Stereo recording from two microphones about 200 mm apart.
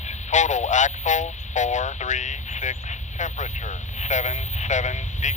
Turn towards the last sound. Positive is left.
turn(degrees=35)  # may be behind; listen again after turning